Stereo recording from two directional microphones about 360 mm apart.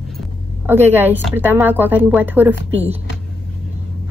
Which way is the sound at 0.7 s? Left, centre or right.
Centre.